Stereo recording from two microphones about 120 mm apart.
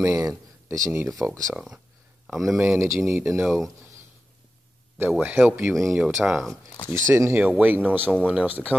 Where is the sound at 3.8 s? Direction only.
20° right (ahead or behind).